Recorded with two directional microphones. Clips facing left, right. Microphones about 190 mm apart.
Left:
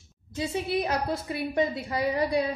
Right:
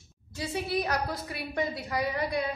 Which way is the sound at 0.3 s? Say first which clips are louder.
Left 3 dB; 20° left (ahead or behind).